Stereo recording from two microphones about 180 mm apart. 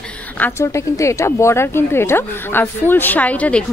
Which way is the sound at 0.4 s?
15° left (ahead or behind).